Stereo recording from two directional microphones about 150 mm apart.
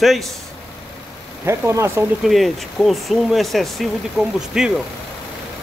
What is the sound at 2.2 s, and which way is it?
Speech, centre (ahead or behind).